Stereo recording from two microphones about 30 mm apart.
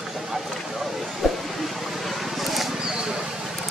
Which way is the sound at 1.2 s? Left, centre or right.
Centre.